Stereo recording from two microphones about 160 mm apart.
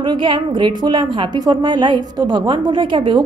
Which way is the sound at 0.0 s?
30° right (ahead or behind).